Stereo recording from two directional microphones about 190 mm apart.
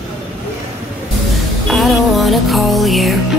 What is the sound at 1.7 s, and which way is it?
Music, centre (ahead or behind).